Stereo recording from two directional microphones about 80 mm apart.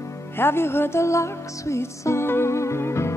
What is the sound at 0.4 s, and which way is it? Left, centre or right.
Music, left.